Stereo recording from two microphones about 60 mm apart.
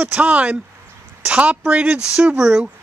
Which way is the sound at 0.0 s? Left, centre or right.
Right.